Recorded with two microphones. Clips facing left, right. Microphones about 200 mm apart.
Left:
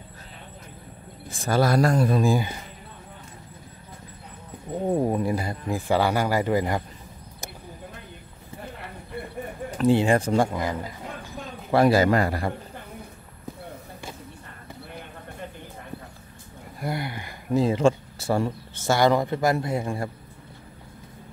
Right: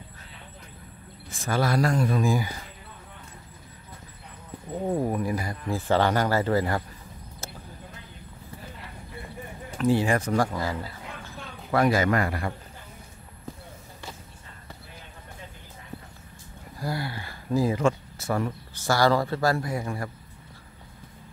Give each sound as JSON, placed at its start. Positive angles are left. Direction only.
{"t": 1.3, "sound": "speech", "side_deg": 35}
{"t": 4.8, "sound": "speech", "side_deg": 25}
{"t": 5.8, "sound": "speech", "side_deg": 10}
{"t": 9.8, "sound": "speech", "side_deg": 25}
{"t": 11.3, "sound": "a man's voice", "side_deg": 35}
{"t": 16.8, "sound": "speech", "side_deg": 20}